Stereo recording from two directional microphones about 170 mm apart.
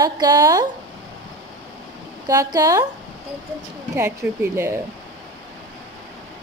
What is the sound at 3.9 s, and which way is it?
Speech, 15° right (ahead or behind).